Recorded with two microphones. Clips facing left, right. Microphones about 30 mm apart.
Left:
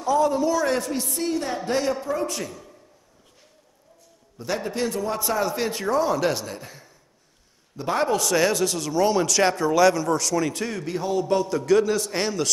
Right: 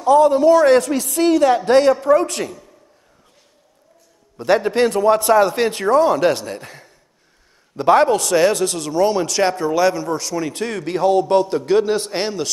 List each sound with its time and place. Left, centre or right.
0.0 s a man's voice: right
0.7 s a woman's voice: right
4.4 s a man's voice: right
7.7 s a man's voice: right
8.2 s a man's voice: right
10.5 s a man's voice: right